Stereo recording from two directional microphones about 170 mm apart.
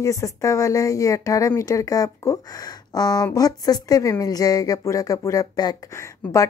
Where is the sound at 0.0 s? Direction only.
20° left (ahead or behind).